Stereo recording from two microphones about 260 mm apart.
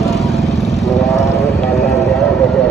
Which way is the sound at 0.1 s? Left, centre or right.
Centre.